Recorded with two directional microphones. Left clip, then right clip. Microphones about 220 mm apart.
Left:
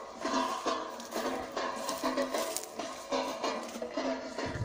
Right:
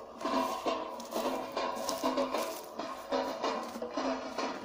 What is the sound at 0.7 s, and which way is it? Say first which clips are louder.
Music: even; 5° left (ahead or behind).